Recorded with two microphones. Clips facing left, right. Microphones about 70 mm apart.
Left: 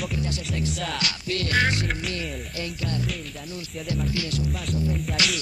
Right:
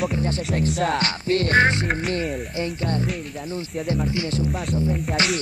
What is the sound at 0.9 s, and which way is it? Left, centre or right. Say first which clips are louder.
Music: right 7 dB; right.